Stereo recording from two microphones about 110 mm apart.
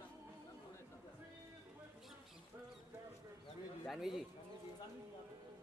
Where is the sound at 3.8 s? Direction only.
Centre (ahead or behind).